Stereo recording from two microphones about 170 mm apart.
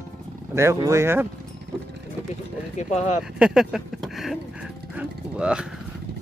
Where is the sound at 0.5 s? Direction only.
15° right (ahead or behind).